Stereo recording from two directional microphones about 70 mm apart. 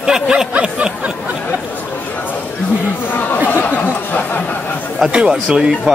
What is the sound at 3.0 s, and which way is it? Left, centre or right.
Chatter, left.